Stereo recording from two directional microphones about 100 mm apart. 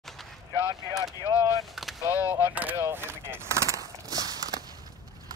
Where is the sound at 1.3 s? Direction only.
25° right (ahead or behind).